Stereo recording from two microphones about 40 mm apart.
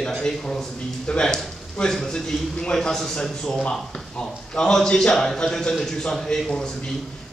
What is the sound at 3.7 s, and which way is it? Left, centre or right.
A man's voice, centre.